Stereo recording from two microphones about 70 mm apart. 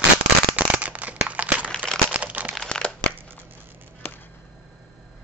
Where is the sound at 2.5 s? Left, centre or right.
Centre.